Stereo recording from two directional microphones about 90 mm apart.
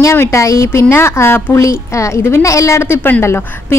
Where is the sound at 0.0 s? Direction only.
30° left (ahead or behind).